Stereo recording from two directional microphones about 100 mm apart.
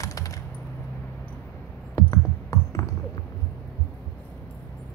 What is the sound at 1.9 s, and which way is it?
Music, 30° left (ahead or behind).